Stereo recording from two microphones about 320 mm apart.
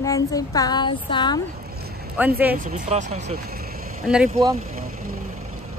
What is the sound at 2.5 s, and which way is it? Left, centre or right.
Speech, right.